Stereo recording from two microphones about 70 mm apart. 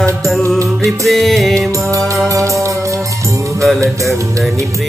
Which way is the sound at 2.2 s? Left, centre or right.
Right.